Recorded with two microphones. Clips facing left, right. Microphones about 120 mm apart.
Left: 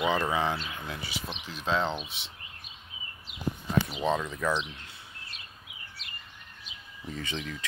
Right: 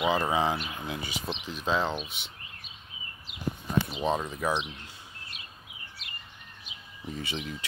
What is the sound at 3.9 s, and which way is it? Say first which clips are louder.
Speech: even; 20° right (ahead or behind).